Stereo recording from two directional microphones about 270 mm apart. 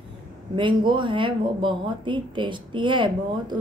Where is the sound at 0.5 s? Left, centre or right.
Centre.